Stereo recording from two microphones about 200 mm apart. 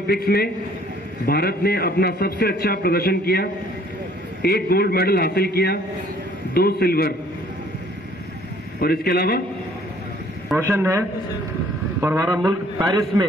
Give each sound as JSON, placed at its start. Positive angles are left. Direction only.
{"t": 0.0, "sound": "a man's voice", "side_deg": 50}
{"t": 8.8, "sound": "a man's voice", "side_deg": 50}
{"t": 10.7, "sound": "a man's voice", "side_deg": -10}